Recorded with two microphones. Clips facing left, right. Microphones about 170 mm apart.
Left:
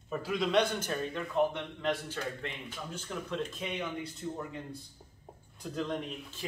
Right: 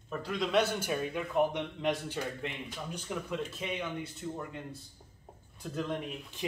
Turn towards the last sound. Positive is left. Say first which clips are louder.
# right 2 dB
turn(degrees=-15)  # may be behind; listen again after turning